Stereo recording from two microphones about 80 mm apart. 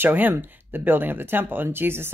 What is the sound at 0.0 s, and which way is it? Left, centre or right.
Speech, right.